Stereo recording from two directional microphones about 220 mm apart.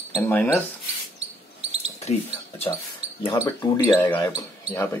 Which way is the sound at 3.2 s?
15° left (ahead or behind).